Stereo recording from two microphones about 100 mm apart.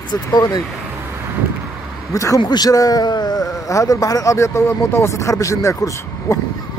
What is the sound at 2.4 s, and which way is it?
A man's voice, 45° left (ahead or behind).